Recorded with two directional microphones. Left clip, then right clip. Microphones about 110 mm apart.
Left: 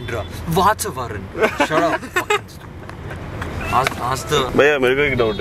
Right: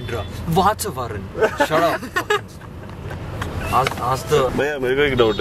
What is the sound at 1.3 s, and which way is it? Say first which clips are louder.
Speech: left 1 dB; 50° left (ahead or behind).